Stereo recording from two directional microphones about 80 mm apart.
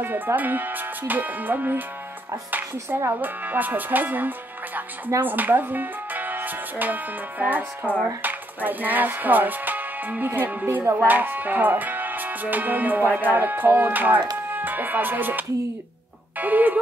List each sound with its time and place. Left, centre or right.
0.0 s speech: right
3.0 s speech: right